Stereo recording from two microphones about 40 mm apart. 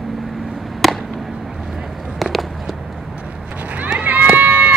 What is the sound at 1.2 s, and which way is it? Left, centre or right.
Vehicle, centre.